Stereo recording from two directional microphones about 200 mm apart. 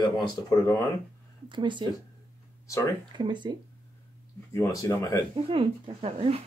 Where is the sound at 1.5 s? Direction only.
25° right (ahead or behind).